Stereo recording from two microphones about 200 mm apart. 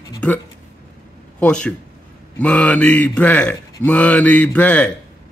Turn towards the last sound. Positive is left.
turn(degrees=5)  # may be behind; listen again after turning